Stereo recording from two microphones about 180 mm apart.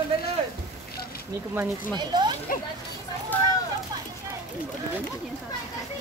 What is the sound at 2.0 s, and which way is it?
Speech, 25° right (ahead or behind).